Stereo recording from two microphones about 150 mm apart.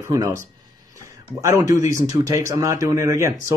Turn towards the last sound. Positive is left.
turn(degrees=-20)  # may be behind; listen again after turning